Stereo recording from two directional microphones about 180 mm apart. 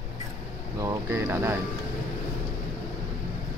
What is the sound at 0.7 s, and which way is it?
Speech, 15° right (ahead or behind).